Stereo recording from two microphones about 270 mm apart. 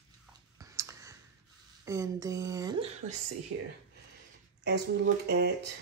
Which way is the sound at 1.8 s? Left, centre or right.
Centre.